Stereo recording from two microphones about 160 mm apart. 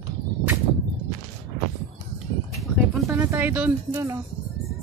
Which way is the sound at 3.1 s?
15° right (ahead or behind).